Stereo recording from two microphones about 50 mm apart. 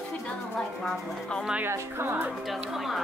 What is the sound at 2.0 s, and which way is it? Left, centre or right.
Speech, right.